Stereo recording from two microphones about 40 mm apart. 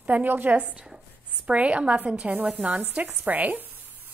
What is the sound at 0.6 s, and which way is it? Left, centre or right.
A woman's voice, right.